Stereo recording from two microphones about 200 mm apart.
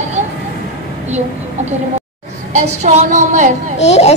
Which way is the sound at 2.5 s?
35° right (ahead or behind).